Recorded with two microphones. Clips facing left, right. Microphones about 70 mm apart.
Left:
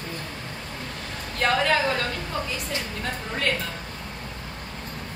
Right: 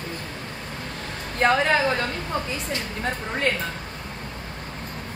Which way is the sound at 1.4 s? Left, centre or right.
Right.